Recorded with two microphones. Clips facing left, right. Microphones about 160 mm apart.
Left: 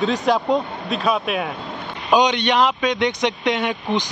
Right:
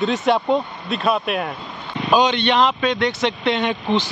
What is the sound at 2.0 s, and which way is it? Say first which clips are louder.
Speech: even; 15° left (ahead or behind).